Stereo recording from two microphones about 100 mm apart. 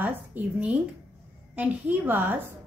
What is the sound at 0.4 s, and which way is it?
Speech, 20° right (ahead or behind).